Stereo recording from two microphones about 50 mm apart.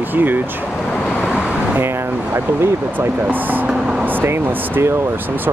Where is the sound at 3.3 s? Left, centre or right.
Right.